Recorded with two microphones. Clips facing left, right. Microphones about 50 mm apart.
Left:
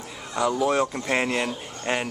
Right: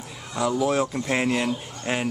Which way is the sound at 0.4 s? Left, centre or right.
Centre.